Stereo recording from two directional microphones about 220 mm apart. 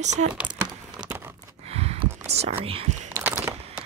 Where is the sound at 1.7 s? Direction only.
30° right (ahead or behind).